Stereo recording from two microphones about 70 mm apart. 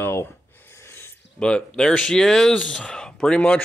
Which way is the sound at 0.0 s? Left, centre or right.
Left.